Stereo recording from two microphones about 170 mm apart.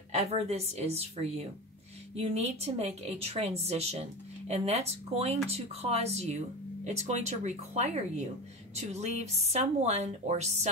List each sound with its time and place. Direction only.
0.1 s a woman's voice: 40° right (ahead or behind)